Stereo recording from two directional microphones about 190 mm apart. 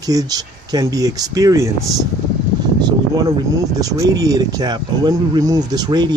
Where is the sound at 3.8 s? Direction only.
20° right (ahead or behind).